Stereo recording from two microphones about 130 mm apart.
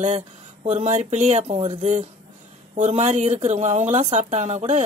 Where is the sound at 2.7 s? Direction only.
60° right (ahead or behind).